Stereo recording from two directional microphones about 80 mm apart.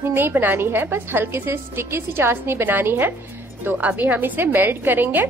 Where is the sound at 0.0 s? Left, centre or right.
Right.